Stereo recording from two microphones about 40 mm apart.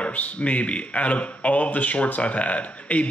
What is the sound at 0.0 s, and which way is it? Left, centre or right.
A man's voice, left.